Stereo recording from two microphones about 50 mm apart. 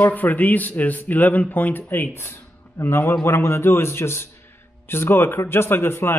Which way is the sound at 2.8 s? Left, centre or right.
Left.